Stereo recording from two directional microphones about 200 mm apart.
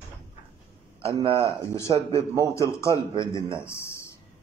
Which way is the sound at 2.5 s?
15° left (ahead or behind).